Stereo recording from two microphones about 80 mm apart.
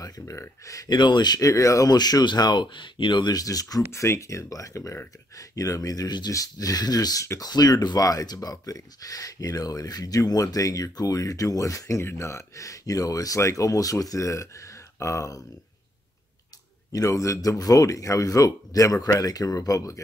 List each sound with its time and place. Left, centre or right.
0.2 s speech: left
0.8 s speech: left
3.3 s speech: left
3.9 s speech: left
16.9 s speech: left